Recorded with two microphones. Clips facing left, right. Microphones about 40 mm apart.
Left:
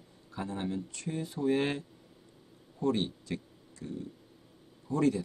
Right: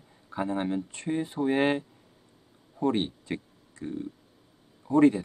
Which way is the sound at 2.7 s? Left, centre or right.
Right.